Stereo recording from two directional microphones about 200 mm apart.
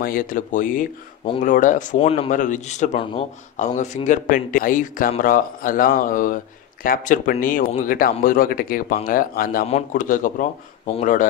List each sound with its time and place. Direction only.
0.0 s speech: 45° left (ahead or behind)